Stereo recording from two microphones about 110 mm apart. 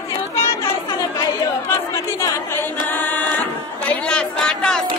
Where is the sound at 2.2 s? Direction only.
20° left (ahead or behind).